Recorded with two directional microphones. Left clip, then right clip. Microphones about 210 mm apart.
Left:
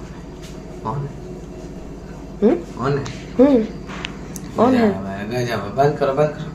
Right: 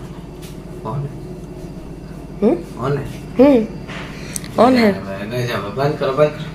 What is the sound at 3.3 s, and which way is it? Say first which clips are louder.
A woman's voice: right 3 dB; centre (ahead or behind).